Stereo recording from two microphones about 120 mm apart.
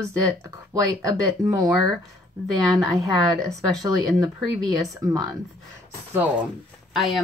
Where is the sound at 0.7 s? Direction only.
30° right (ahead or behind).